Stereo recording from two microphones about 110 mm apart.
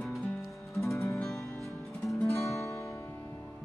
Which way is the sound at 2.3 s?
25° left (ahead or behind).